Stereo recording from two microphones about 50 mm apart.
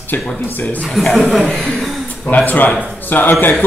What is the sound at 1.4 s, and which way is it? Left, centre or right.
Speech, centre.